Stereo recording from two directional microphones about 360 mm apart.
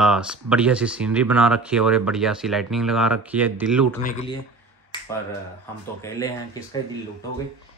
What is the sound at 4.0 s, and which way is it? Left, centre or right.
Speech, left.